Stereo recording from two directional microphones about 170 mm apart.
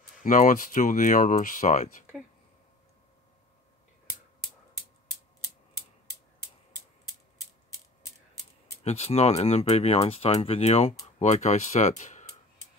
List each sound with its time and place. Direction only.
0.2 s speech: 50° left (ahead or behind)
8.8 s speech: 40° left (ahead or behind)
12.0 s a sound: 40° left (ahead or behind)